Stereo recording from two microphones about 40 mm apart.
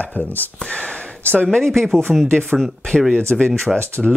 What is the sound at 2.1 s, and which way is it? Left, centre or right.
Speech, centre.